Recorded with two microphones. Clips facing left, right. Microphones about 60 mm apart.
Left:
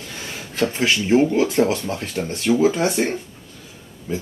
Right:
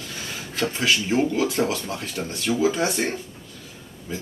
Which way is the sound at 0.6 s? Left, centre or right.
Left.